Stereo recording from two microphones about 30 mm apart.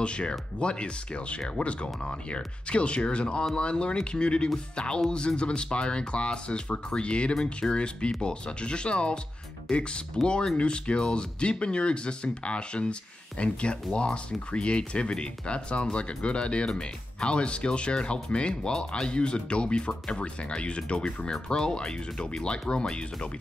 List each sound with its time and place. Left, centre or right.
0.0 s speech: left